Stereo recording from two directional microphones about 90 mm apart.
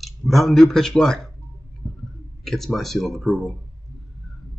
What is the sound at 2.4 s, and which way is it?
Speech, 5° left (ahead or behind).